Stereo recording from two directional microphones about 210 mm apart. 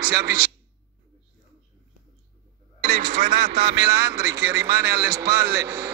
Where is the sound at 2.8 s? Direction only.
50° right (ahead or behind).